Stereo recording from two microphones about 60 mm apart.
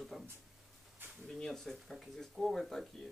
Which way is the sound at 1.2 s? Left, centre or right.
Centre.